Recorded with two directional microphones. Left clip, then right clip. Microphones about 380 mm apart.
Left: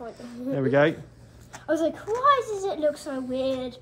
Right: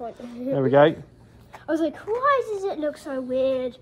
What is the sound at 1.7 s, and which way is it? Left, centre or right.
Speech, right.